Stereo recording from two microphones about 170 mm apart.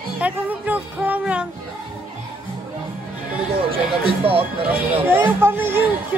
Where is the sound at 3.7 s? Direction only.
35° right (ahead or behind).